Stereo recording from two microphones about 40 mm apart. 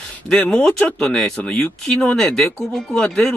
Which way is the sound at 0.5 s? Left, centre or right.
Centre.